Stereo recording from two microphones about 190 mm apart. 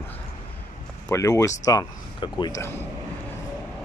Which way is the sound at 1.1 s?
15° left (ahead or behind).